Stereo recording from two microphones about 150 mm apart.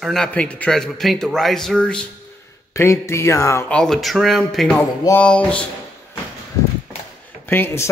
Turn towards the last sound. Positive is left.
turn(degrees=15)  # may be behind; listen again after turning